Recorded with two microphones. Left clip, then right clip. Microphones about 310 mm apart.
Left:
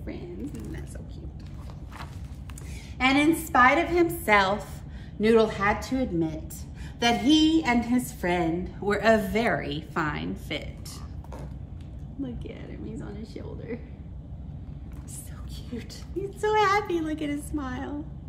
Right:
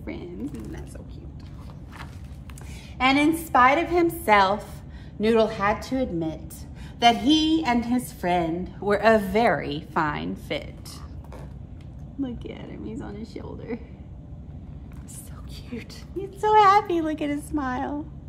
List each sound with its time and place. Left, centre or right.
3.0 s a woman's voice: centre
16.3 s a woman's voice: centre